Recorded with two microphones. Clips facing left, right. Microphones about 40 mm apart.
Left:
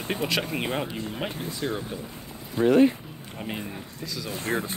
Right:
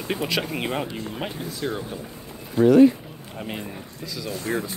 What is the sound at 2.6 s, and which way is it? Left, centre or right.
Speech, left.